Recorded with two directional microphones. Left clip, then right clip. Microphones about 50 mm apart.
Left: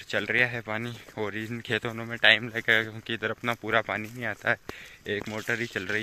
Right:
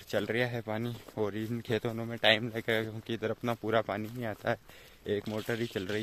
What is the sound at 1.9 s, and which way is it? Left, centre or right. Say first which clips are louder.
Speech: left 6 dB; centre.